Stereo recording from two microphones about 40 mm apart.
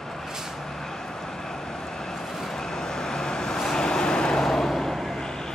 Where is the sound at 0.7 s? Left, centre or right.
Centre.